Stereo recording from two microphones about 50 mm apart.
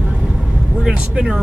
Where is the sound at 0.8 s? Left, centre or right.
Centre.